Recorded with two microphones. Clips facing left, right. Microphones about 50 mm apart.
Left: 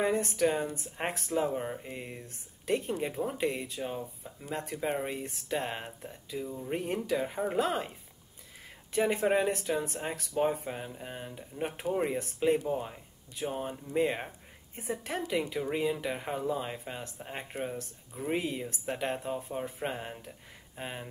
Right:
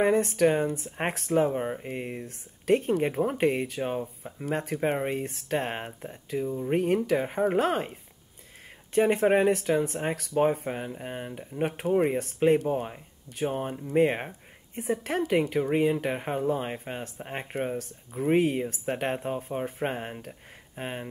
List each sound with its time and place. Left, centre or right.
0.0 s speech: right
2.6 s speech: right
6.7 s speech: right
9.1 s speech: right
11.0 s speech: right
12.2 s speech: right
18.3 s speech: right
20.2 s a sound: right